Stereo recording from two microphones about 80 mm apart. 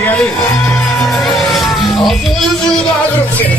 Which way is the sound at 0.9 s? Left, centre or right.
Centre.